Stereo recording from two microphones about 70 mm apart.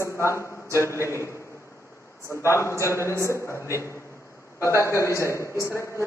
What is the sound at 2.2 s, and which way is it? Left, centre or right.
A man's voice, left.